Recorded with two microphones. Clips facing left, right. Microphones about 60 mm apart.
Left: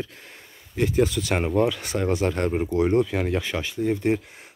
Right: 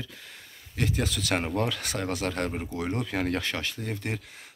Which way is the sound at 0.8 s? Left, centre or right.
Centre.